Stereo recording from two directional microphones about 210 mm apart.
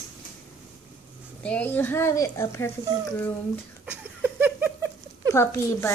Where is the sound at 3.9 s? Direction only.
10° right (ahead or behind).